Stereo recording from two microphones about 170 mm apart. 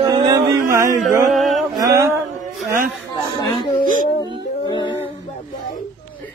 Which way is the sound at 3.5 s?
30° left (ahead or behind).